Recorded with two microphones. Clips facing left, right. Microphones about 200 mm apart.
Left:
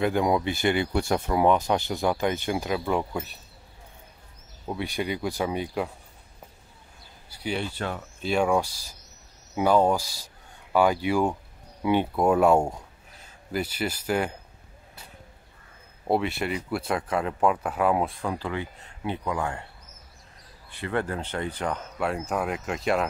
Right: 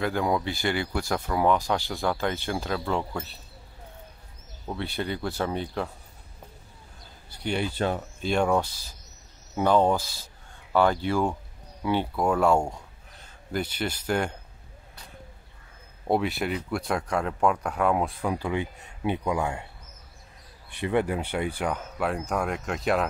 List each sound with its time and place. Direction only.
0.0 s speech: 20° left (ahead or behind)
4.6 s speech: 15° left (ahead or behind)
7.2 s speech: 5° left (ahead or behind)
7.7 s speech: 25° right (ahead or behind)
8.2 s speech: 5° left (ahead or behind)
13.2 s speech: 5° left (ahead or behind)
16.1 s speech: centre (ahead or behind)
18.3 s speech: 15° right (ahead or behind)
20.7 s speech: 15° right (ahead or behind); by 23.0 s centre (ahead or behind)